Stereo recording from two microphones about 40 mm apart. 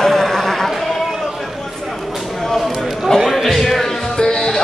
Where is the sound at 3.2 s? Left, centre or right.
Centre.